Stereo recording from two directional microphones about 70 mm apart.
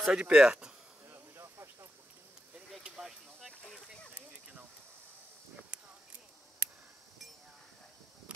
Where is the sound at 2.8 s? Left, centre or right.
Centre.